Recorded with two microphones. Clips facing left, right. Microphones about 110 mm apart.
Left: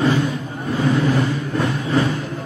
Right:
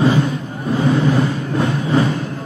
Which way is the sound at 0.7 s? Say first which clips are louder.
Right 2 dB; 25° right (ahead or behind).